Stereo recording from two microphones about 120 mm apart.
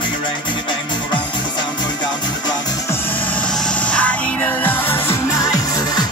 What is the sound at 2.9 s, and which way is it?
Music, 15° left (ahead or behind).